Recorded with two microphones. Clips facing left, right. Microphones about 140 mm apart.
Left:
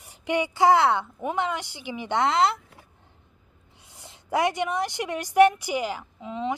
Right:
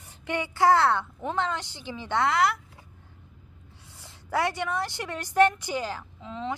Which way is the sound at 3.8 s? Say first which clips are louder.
Left 4 dB; 15° left (ahead or behind).